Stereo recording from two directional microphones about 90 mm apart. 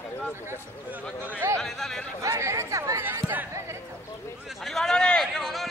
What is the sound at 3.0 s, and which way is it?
Speech, 25° right (ahead or behind).